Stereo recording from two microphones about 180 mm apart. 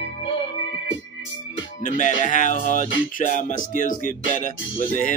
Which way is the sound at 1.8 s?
45° left (ahead or behind).